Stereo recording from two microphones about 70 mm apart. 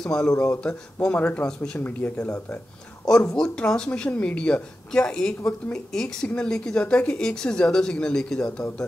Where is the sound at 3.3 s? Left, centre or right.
Centre.